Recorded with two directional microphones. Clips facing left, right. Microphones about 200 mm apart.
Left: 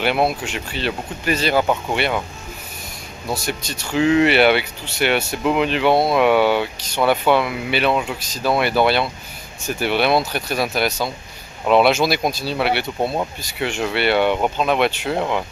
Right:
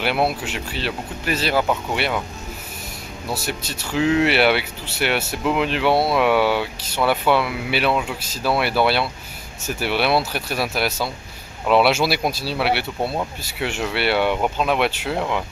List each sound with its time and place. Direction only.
0.3 s speech: 5° right (ahead or behind)
3.3 s speech: 5° right (ahead or behind)
13.0 s speech: 20° left (ahead or behind)
13.4 s speech: 5° right (ahead or behind)